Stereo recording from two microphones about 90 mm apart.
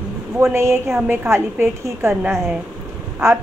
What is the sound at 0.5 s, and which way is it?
A woman's voice, 30° right (ahead or behind).